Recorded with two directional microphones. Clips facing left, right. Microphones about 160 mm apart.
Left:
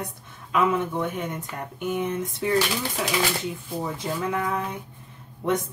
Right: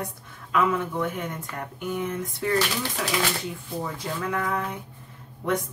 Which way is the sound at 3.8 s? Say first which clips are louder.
Left 3 dB; 20° left (ahead or behind).